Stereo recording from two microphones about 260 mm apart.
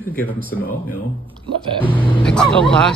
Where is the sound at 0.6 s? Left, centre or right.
Left.